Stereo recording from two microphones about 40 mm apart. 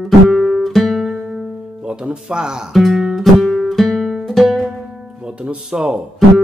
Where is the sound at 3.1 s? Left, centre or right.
Centre.